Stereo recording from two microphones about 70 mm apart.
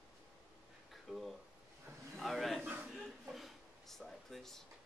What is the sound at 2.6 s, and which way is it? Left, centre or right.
Speech, right.